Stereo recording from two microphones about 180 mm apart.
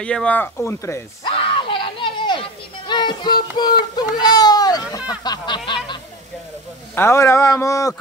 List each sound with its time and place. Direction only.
0.0 s speech: 5° left (ahead or behind)
1.2 s a sound: 30° left (ahead or behind)
7.0 s speech: 15° left (ahead or behind)